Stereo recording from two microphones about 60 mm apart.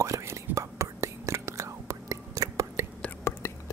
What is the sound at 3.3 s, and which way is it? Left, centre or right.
Whispering, left.